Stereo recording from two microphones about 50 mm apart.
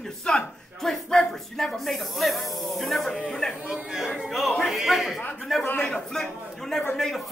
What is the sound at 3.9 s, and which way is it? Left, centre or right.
Speech, centre.